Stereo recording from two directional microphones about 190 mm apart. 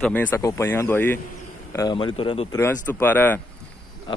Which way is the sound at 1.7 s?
20° left (ahead or behind).